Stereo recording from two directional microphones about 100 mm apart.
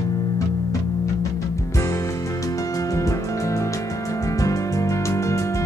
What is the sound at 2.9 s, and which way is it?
Music, 30° left (ahead or behind).